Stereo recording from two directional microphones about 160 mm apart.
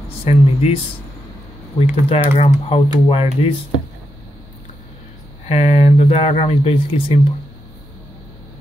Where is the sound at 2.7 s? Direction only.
35° left (ahead or behind).